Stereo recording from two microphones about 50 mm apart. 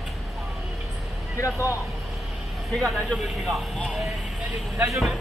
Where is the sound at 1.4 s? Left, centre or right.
Left.